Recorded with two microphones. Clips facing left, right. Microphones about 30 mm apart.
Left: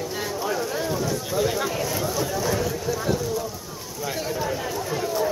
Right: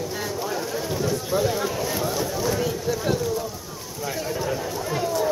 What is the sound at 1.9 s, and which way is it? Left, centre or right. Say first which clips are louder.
Speech: right 1 dB; centre.